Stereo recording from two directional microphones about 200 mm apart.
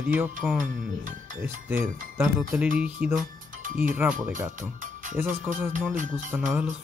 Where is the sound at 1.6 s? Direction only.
10° right (ahead or behind).